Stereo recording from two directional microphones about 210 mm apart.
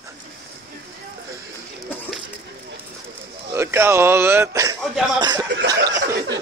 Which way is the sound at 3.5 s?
10° right (ahead or behind).